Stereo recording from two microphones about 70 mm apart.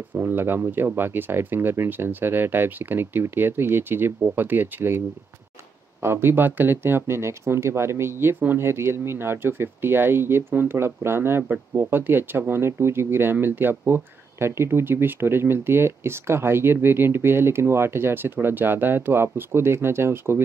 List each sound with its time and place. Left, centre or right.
0.1 s speech: right
6.0 s speech: right